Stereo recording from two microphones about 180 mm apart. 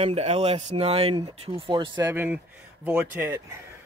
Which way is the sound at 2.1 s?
10° right (ahead or behind).